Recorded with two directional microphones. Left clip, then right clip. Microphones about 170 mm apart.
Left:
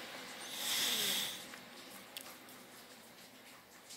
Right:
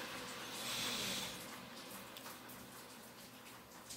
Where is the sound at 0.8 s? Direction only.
10° left (ahead or behind).